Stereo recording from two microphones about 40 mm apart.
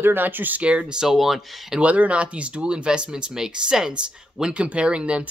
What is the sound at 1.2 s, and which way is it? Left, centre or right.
Speech, centre.